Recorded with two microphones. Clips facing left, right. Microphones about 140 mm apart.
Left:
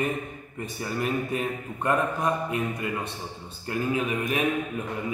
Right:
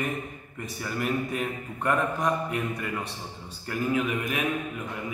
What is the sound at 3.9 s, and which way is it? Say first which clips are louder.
Speech: even; 25° left (ahead or behind).